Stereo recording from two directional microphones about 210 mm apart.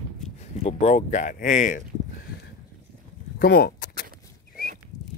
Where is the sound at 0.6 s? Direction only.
30° left (ahead or behind).